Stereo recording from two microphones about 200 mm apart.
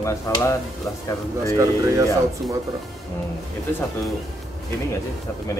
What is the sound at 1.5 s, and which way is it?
Speech, 15° right (ahead or behind).